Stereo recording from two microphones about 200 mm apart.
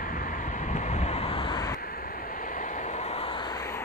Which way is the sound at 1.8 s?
45° left (ahead or behind).